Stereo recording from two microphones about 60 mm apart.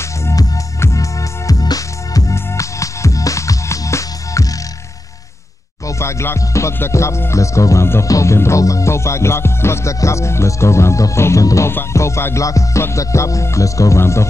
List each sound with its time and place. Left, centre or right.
0.2 s music: left
1.5 s music: left
2.3 s music: left
5.9 s music: left
12.4 s speech: left